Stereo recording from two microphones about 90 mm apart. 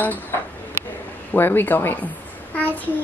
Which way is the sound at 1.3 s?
25° left (ahead or behind).